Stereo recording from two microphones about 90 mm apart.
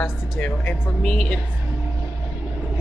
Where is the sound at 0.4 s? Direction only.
15° left (ahead or behind).